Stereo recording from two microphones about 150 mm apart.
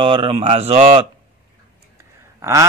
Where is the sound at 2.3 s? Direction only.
20° right (ahead or behind).